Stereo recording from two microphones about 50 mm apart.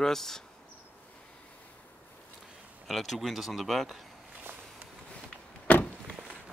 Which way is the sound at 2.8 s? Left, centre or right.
Centre.